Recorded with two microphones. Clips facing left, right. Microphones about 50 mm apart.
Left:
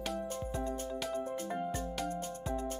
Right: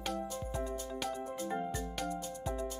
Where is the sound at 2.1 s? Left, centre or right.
Left.